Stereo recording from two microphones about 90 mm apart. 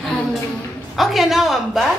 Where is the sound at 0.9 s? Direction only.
Centre (ahead or behind).